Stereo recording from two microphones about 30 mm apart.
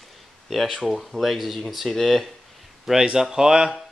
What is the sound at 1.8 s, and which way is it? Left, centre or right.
Speech, centre.